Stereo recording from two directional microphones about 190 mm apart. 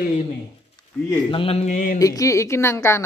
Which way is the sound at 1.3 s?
30° left (ahead or behind).